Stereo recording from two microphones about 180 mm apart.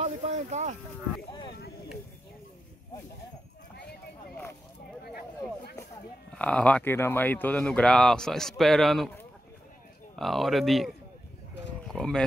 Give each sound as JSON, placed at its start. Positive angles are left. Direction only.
{"t": 0.0, "sound": "speech", "side_deg": -40}
{"t": 6.3, "sound": "speech", "side_deg": 5}
{"t": 10.1, "sound": "speech", "side_deg": 0}
{"t": 11.9, "sound": "speech", "side_deg": 5}